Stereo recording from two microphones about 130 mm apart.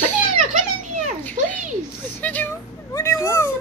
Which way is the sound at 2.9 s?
20° left (ahead or behind).